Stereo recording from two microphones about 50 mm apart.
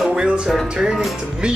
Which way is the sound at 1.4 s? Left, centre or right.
Centre.